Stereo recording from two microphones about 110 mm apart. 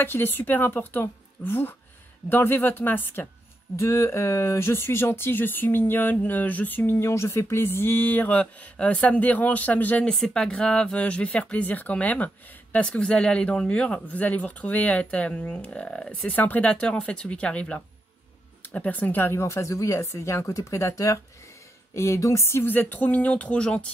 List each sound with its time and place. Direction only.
0.0 s speech: 20° left (ahead or behind)